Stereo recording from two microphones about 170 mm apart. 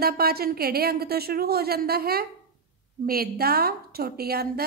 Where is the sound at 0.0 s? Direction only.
65° right (ahead or behind).